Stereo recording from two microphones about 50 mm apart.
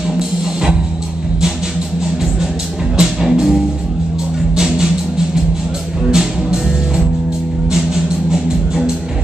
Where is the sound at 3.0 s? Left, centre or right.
Centre.